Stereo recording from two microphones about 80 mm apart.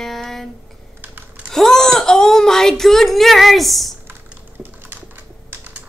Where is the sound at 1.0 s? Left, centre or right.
Right.